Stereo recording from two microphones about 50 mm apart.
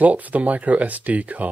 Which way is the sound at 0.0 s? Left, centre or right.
Right.